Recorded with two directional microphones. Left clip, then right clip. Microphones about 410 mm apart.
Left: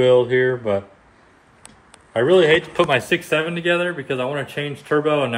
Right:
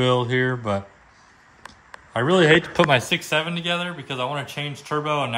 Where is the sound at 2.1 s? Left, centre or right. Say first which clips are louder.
Left 2 dB; centre.